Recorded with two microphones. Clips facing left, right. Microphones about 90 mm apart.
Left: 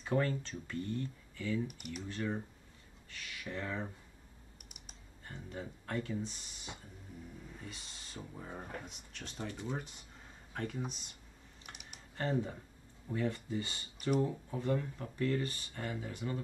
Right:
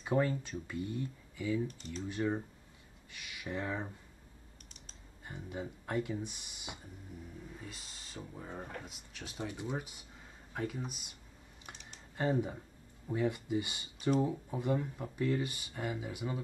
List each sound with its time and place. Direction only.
0.0 s speech: 10° right (ahead or behind)
4.6 s computer keyboard: 10° left (ahead or behind)
5.2 s speech: 15° right (ahead or behind)
7.5 s speech: centre (ahead or behind)
11.7 s typing: 10° left (ahead or behind)
12.2 s speech: 15° right (ahead or behind)